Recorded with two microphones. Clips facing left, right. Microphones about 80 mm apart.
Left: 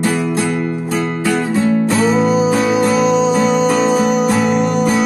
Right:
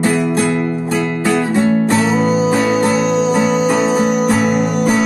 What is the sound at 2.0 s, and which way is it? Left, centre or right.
Music, centre.